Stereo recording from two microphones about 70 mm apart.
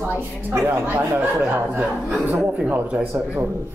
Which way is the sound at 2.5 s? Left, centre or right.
Right.